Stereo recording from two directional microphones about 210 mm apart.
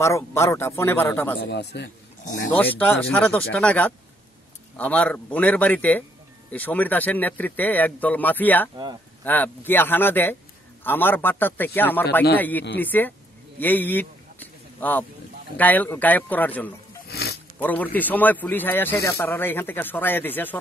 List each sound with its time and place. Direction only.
0.0 s a man's voice: 10° left (ahead or behind)
1.4 s a man's voice: 55° left (ahead or behind)
2.5 s a man's voice: 10° left (ahead or behind)
13.6 s a sound: 10° left (ahead or behind)
15.5 s a man's voice: 10° left (ahead or behind)
17.1 s a sound: 50° left (ahead or behind)
17.6 s a man's voice: 10° left (ahead or behind)